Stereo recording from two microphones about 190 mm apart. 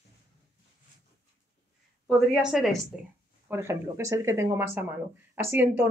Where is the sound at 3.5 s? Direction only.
15° right (ahead or behind).